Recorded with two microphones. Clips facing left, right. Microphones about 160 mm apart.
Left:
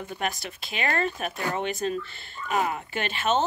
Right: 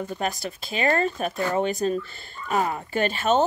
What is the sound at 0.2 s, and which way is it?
Speech, 35° right (ahead or behind).